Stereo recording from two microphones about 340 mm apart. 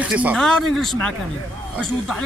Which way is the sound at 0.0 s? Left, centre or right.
Centre.